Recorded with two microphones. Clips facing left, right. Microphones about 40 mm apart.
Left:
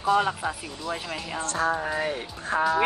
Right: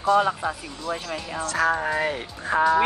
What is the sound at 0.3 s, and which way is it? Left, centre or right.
Speech, centre.